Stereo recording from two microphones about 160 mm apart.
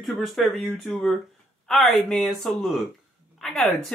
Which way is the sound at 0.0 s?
Centre (ahead or behind).